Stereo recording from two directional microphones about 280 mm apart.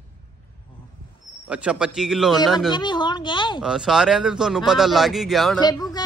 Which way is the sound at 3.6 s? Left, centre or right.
Centre.